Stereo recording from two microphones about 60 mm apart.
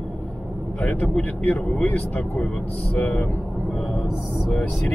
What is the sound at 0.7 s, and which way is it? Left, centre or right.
Speech, left.